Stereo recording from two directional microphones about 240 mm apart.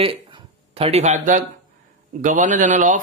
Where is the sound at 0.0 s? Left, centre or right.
Right.